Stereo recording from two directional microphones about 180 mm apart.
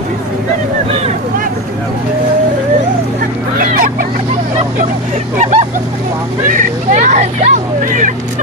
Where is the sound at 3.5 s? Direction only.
50° right (ahead or behind).